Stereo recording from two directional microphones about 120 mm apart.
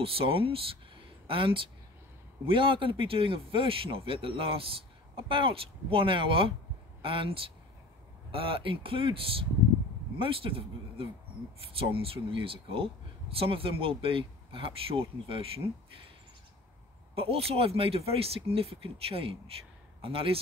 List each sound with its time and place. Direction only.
0.0 s speech: 50° right (ahead or behind)
17.1 s speech: 55° right (ahead or behind)